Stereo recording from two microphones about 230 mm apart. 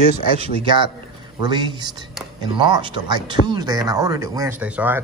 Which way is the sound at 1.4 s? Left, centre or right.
Centre.